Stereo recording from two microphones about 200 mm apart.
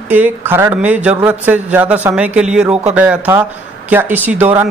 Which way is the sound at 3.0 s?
10° right (ahead or behind).